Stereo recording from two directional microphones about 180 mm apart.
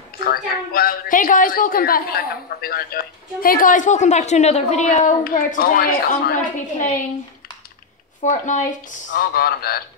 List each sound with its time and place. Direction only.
0.2 s a woman's voice: 60° left (ahead or behind); by 5.1 s 40° left (ahead or behind)
5.2 s a woman's voice: 55° left (ahead or behind)
8.2 s a woman's voice: 45° left (ahead or behind)